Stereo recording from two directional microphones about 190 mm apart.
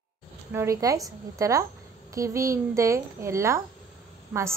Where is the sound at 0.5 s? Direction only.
15° right (ahead or behind).